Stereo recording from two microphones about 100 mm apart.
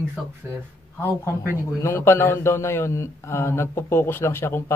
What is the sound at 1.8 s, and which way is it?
Speech, 25° left (ahead or behind).